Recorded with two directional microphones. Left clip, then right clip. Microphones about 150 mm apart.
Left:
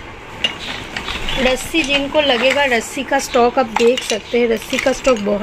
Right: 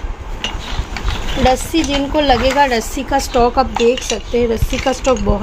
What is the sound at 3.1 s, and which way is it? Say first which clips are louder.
Speech: even; 10° right (ahead or behind).